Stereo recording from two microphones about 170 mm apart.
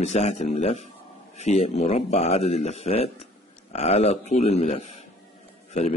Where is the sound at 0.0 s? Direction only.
40° left (ahead or behind).